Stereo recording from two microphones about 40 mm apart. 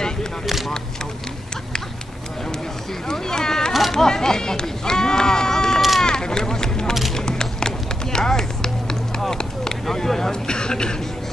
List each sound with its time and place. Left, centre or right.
3.1 s a sound: centre
3.9 s speech: centre
5.8 s run: centre
6.0 s run: centre
6.9 s a sound: centre
7.2 s run: centre
9.3 s a sound: centre
9.9 s speech: centre
10.5 s a man's voice: left